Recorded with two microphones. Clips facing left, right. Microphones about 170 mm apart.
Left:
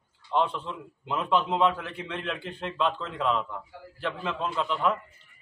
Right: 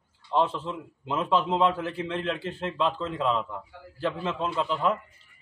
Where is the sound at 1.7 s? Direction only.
35° right (ahead or behind).